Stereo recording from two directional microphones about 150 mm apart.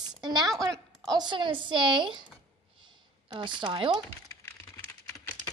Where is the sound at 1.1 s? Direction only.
30° right (ahead or behind).